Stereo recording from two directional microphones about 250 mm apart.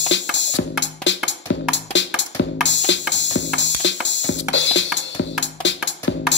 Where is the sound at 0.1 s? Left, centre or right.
Left.